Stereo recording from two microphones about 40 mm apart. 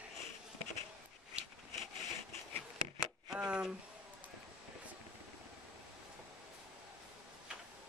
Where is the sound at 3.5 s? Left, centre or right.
Right.